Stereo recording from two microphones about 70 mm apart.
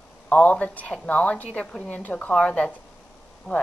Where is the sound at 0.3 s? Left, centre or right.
Left.